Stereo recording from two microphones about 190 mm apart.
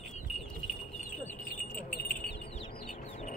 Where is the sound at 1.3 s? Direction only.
45° left (ahead or behind).